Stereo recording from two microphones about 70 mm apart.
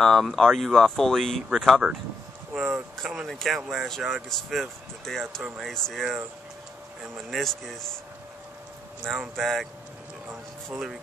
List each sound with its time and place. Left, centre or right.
0.0 s speech: centre
7.2 s speech: centre
9.1 s speech: centre